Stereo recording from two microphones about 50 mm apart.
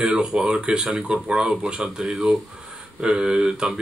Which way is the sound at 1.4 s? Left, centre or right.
Right.